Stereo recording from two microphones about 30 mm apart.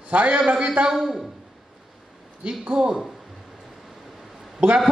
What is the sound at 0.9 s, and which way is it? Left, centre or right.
Speech, centre.